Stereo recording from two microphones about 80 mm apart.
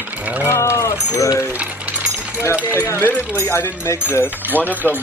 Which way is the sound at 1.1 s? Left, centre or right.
Left.